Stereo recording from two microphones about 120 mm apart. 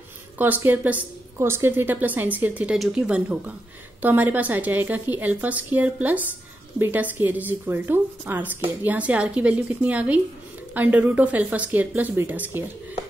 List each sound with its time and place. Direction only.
0.4 s a woman's voice: 15° right (ahead or behind)